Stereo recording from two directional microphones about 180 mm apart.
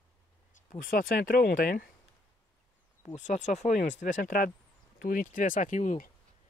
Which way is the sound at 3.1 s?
40° left (ahead or behind).